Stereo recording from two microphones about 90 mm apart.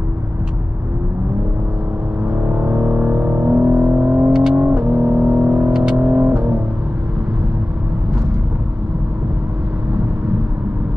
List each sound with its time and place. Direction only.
2.5 s a sound: 15° right (ahead or behind)
4.3 s music: 5° right (ahead or behind)
5.9 s vehicle: 20° right (ahead or behind)